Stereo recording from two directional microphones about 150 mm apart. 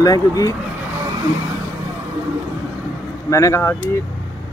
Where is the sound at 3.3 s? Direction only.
20° left (ahead or behind).